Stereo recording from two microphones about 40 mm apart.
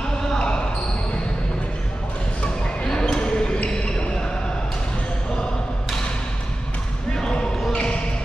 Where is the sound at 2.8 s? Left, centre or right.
Centre.